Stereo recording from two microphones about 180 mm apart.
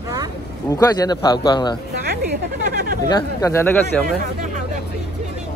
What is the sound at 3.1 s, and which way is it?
Speech, 20° left (ahead or behind).